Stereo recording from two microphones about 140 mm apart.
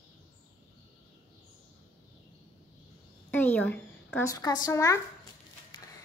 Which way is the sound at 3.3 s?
10° left (ahead or behind).